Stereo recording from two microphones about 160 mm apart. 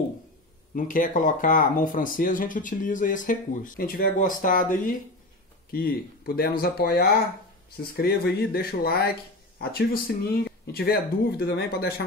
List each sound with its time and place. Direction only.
0.7 s speech: 55° left (ahead or behind)
5.7 s speech: 65° left (ahead or behind)
8.5 s speech: 70° left (ahead or behind)